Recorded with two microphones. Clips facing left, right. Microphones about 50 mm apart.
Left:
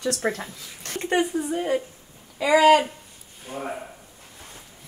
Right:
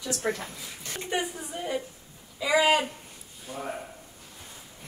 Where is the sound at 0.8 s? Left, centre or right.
Left.